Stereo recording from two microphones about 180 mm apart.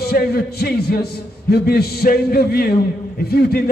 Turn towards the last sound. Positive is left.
turn(degrees=60)  # may be behind; listen again after turning